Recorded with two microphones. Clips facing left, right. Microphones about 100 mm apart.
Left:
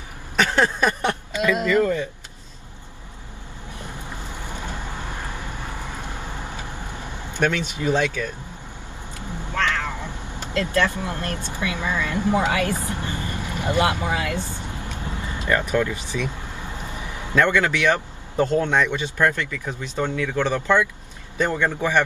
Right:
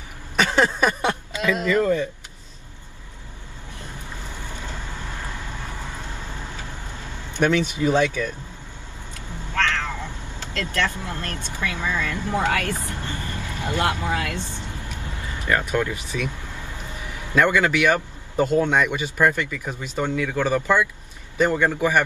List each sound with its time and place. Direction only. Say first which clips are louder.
0.4 s a sound: even; 15° right (ahead or behind)
0.7 s speech: even; 15° right (ahead or behind)
3.8 s vehicle: left 2 dB; 15° left (ahead or behind)
7.3 s speech: right 3 dB; 15° right (ahead or behind)
9.3 s speech: even; 15° left (ahead or behind)
14.7 s vehicle: left 3 dB; 20° left (ahead or behind)
17.4 s speech: right 1 dB; 10° right (ahead or behind)